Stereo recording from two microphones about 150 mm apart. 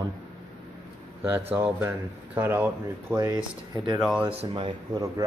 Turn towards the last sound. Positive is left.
turn(degrees=-25)  # may be behind; listen again after turning